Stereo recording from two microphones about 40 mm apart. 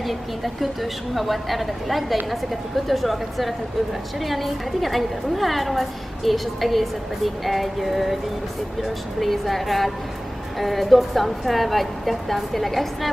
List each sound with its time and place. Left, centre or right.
0.0 s a woman's voice: centre